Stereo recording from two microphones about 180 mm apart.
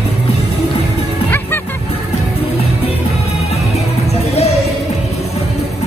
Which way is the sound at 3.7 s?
35° left (ahead or behind).